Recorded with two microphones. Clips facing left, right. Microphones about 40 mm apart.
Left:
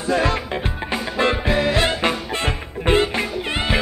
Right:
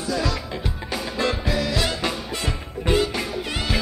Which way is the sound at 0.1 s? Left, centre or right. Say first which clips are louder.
Left 6 dB; left.